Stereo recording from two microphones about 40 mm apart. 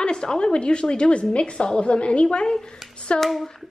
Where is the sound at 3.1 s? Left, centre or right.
Centre.